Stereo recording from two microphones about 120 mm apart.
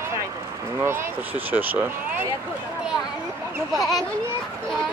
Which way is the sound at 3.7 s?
Centre (ahead or behind).